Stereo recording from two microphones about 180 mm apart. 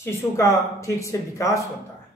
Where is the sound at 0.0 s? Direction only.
15° left (ahead or behind).